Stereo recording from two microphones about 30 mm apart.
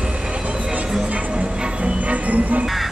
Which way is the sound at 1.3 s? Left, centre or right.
Right.